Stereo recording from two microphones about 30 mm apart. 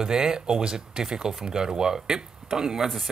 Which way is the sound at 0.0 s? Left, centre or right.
Right.